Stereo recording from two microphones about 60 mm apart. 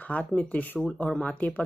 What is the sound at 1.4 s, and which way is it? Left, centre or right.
Speech, left.